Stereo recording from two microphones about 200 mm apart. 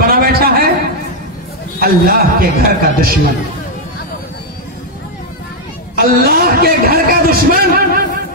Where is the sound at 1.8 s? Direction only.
50° right (ahead or behind).